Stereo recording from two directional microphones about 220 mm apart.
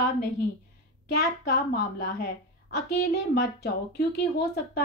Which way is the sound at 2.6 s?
45° left (ahead or behind).